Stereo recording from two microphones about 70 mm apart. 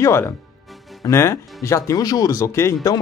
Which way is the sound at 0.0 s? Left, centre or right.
Left.